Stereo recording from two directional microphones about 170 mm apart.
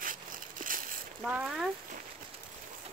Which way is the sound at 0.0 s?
55° right (ahead or behind).